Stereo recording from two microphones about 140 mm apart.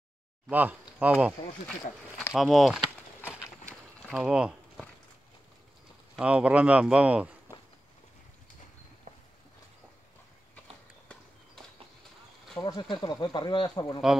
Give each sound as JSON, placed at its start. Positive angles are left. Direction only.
{"t": 0.5, "sound": "speech", "side_deg": -10}
{"t": 2.3, "sound": "speech", "side_deg": 0}
{"t": 4.1, "sound": "a sound", "side_deg": -5}
{"t": 6.1, "sound": "speech", "side_deg": -10}
{"t": 12.5, "sound": "speech", "side_deg": 25}